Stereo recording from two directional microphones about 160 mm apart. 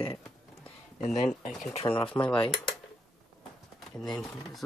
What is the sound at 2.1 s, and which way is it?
Speech, 5° left (ahead or behind).